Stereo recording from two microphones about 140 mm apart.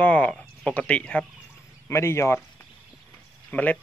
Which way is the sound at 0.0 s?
10° left (ahead or behind).